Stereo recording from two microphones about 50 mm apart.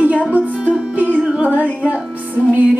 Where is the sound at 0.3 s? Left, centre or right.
Right.